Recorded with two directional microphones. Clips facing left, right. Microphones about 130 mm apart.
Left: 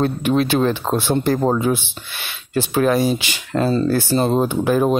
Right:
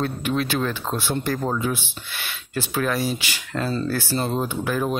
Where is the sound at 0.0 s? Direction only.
25° left (ahead or behind).